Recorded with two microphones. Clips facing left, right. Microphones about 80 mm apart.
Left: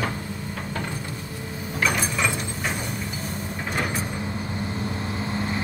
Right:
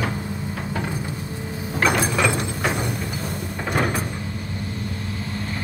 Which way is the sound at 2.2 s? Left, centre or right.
Right.